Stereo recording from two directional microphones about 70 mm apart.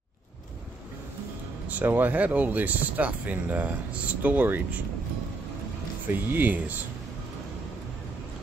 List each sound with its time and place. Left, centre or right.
1.7 s speech: right
6.0 s speech: right